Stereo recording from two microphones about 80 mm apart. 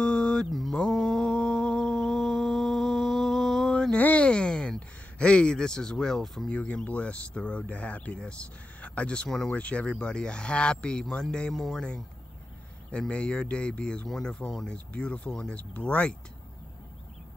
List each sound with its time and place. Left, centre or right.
0.0 s mantra: centre
3.7 s a sound: centre
5.2 s speech: centre
6.5 s speech: centre
11.5 s speech: centre
12.9 s speech: centre